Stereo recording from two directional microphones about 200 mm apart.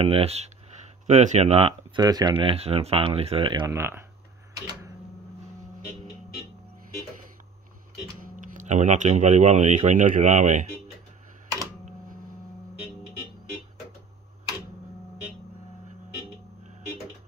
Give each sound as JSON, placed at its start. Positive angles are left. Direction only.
{"t": 0.0, "sound": "speech", "side_deg": -30}
{"t": 8.2, "sound": "speech", "side_deg": -40}